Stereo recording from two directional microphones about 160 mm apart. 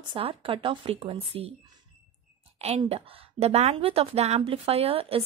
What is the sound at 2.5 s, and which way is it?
A woman's voice, 40° right (ahead or behind).